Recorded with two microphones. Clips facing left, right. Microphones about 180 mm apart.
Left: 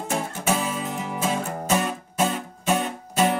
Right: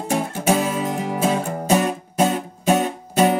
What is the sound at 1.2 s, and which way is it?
Music, 35° right (ahead or behind).